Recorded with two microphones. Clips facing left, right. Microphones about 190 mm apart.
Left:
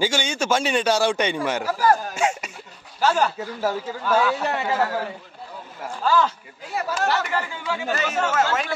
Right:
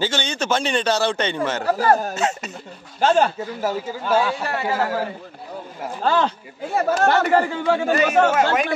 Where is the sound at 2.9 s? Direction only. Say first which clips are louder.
Right 4 dB; 25° right (ahead or behind).